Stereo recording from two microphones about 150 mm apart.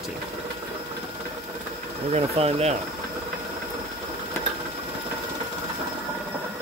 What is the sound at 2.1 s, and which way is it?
Speech, 45° right (ahead or behind).